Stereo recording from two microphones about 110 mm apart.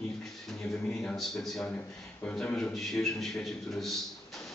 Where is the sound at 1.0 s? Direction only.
5° left (ahead or behind).